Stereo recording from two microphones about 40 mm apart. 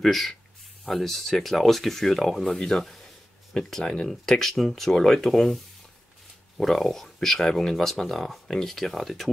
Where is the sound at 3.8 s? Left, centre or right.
Left.